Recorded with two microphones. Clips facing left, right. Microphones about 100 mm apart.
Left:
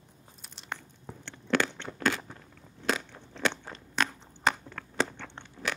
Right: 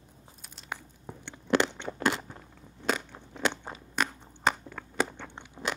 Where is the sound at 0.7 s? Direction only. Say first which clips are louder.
Right 1 dB; 15° right (ahead or behind).